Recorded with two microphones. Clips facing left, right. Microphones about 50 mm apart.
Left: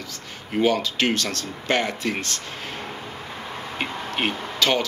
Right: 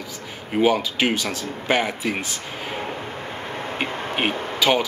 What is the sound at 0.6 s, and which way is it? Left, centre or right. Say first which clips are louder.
Speech: right 2 dB; centre.